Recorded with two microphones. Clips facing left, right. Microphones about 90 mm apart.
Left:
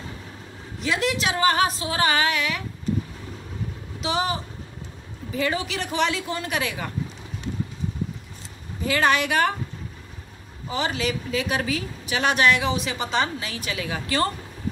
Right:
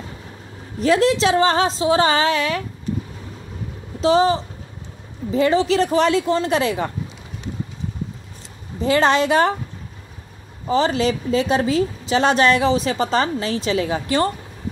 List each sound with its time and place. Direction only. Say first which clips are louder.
0.7 s a woman's voice: right 9 dB; 40° right (ahead or behind)
4.0 s a woman's voice: right 10 dB; 35° right (ahead or behind)
8.8 s speech: right 5 dB; 30° right (ahead or behind)
10.7 s a woman's voice: right 8 dB; 35° right (ahead or behind)